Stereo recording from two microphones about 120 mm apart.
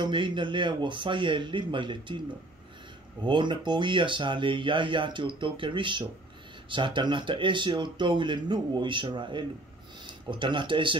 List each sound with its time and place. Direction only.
0.0 s speech: 40° right (ahead or behind)
3.3 s speech: 40° right (ahead or behind)